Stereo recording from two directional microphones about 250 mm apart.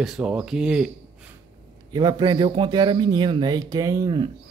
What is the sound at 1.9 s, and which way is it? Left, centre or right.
Speech, centre.